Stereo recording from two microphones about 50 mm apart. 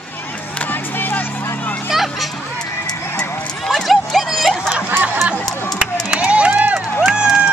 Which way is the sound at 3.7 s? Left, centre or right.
Centre.